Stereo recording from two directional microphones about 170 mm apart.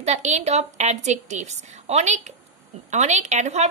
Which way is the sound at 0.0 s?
40° right (ahead or behind).